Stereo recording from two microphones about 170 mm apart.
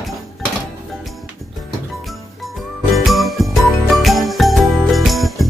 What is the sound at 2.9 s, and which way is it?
Jingle, centre (ahead or behind).